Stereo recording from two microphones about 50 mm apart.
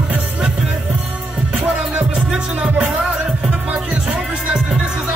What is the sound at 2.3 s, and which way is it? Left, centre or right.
Music, centre.